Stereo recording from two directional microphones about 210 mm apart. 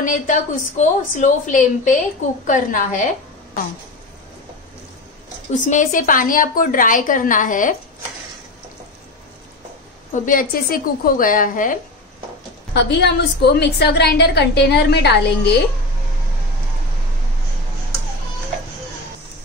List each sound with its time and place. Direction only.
0.0 s a woman's voice: 40° left (ahead or behind)
5.5 s a woman's voice: 35° left (ahead or behind)
10.1 s a woman's voice: 40° left (ahead or behind)
12.7 s a woman's voice: 55° left (ahead or behind)